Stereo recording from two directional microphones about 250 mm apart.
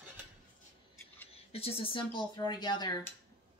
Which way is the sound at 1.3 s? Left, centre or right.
Left.